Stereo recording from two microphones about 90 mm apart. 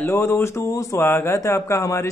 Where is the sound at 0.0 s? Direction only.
25° left (ahead or behind).